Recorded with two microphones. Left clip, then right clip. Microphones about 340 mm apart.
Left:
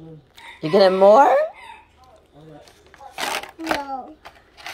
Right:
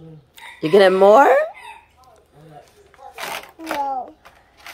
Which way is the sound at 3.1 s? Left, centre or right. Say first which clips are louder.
Left 4 dB; centre.